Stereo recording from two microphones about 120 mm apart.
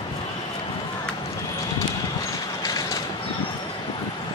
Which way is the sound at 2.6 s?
30° left (ahead or behind).